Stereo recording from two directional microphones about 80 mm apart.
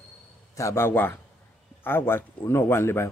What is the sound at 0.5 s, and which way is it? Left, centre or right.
A man's voice, left.